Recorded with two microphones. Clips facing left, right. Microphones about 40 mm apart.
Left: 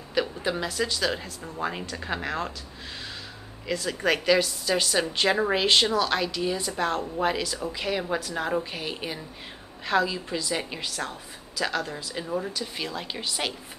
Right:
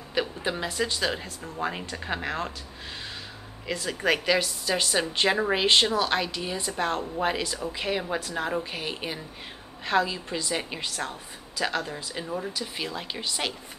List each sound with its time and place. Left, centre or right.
0.1 s a woman's voice: centre
3.6 s a woman's voice: centre